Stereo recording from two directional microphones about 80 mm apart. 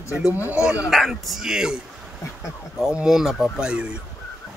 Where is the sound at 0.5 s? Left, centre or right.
Centre.